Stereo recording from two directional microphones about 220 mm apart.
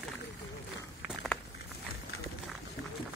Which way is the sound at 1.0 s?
Centre (ahead or behind).